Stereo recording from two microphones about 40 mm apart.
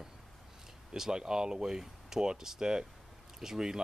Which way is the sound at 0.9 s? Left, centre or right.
Centre.